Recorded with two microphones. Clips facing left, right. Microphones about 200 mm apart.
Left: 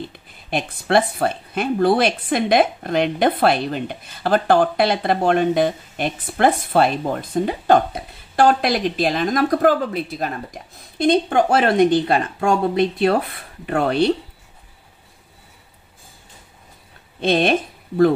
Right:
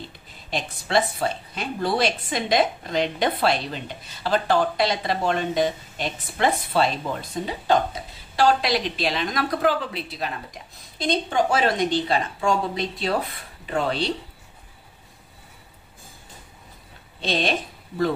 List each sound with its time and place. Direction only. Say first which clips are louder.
0.5 s a woman's voice: left 6 dB; 60° left (ahead or behind)
17.2 s a woman's voice: left 7 dB; 55° left (ahead or behind)